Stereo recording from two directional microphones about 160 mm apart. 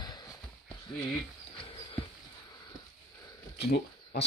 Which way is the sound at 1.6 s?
35° left (ahead or behind).